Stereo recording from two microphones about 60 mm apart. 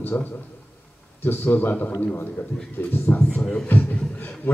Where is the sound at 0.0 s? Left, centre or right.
Left.